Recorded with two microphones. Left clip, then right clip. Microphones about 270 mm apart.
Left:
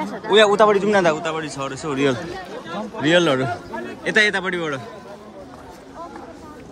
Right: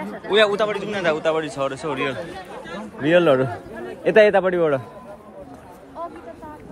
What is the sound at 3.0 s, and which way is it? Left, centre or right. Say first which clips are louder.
A man's voice: right 1 dB; centre.